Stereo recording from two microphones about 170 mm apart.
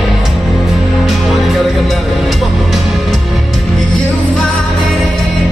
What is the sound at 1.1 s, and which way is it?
Music, centre (ahead or behind).